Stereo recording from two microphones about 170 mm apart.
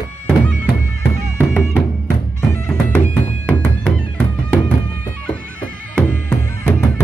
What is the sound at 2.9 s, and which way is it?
Music, 10° left (ahead or behind).